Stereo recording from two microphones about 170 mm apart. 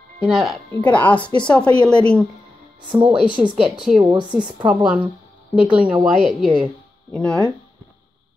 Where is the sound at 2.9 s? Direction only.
20° right (ahead or behind).